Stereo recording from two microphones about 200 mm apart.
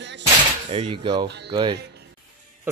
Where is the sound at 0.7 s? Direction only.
30° right (ahead or behind).